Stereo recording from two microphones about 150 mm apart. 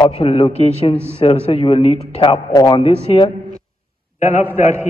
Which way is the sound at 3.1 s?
45° left (ahead or behind).